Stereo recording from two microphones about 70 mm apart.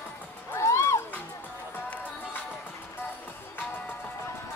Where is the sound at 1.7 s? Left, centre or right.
Left.